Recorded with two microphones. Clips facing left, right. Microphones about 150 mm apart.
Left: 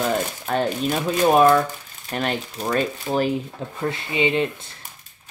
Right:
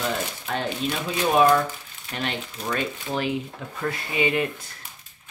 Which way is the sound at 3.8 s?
25° left (ahead or behind).